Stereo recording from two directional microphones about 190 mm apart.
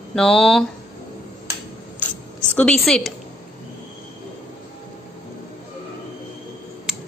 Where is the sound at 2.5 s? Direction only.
5° left (ahead or behind).